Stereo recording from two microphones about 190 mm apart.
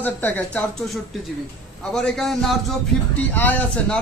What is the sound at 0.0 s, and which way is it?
Speech, 10° left (ahead or behind).